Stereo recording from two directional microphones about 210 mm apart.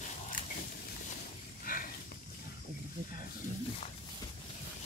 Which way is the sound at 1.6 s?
40° left (ahead or behind).